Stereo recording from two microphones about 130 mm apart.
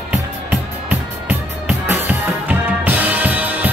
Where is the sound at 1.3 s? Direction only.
15° right (ahead or behind).